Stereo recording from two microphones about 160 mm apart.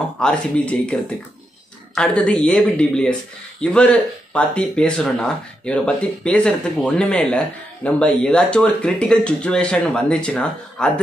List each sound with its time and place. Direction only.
0.2 s speech: 5° left (ahead or behind)
2.0 s speech: 5° left (ahead or behind)